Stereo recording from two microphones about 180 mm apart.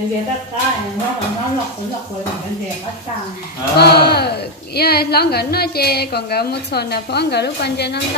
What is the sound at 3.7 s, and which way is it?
A woman's voice, 65° left (ahead or behind).